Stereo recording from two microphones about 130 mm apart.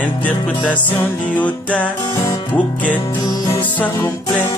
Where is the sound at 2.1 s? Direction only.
30° left (ahead or behind).